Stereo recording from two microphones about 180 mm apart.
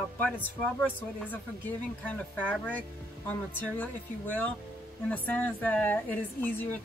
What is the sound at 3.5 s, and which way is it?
Speech, 10° left (ahead or behind).